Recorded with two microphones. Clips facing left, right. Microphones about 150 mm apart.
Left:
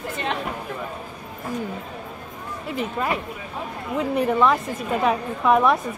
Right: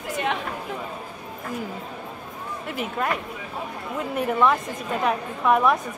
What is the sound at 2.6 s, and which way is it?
A woman's voice, centre (ahead or behind).